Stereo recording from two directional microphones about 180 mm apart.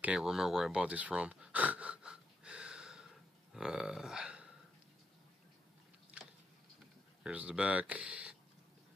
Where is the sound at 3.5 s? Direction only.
5° right (ahead or behind).